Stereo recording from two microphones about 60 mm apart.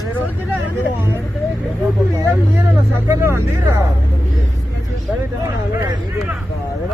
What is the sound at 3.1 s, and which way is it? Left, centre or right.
Speech, right.